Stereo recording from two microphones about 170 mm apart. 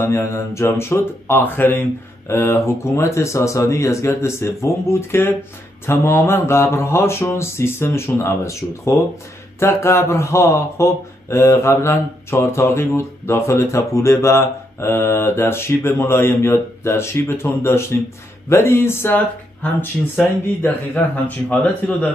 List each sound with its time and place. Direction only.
0.0 s speech: 15° left (ahead or behind)